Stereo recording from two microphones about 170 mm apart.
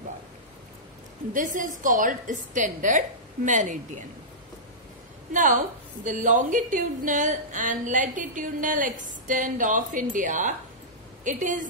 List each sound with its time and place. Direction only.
1.3 s a woman's voice: 50° right (ahead or behind)
5.3 s a woman's voice: 50° right (ahead or behind)